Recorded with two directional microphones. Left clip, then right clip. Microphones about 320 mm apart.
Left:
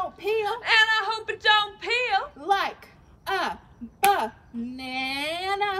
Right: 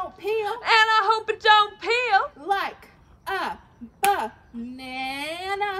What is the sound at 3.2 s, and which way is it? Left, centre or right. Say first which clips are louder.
Babbling: left 1 dB; centre.